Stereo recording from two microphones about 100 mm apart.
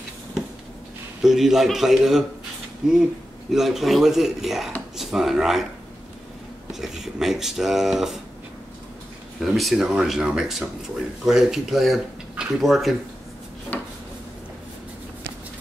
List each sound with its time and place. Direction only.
1.2 s speech: 5° right (ahead or behind)
6.7 s speech: 5° right (ahead or behind)
9.4 s speech: centre (ahead or behind)
13.7 s a sound: 20° left (ahead or behind)